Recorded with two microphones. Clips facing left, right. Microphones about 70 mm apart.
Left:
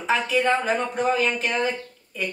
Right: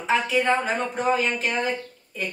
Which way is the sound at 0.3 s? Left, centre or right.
Centre.